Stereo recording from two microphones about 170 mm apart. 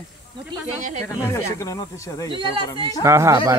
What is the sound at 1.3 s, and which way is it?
Speech, 20° left (ahead or behind).